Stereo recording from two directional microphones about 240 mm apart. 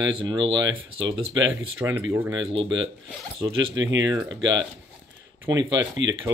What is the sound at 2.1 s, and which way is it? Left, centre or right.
Speech, centre.